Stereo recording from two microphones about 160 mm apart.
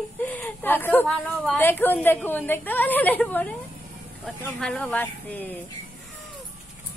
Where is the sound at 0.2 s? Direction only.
10° left (ahead or behind).